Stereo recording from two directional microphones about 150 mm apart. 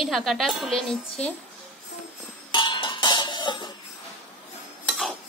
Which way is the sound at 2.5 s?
30° left (ahead or behind).